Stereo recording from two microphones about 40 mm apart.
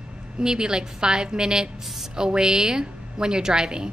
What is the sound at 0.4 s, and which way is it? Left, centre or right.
A woman's voice, centre.